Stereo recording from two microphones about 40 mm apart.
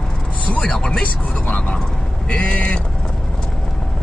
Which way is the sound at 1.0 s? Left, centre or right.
Left.